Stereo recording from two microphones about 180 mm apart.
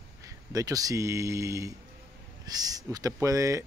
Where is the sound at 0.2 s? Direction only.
20° right (ahead or behind).